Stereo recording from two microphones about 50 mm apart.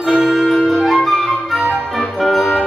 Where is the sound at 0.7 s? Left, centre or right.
Centre.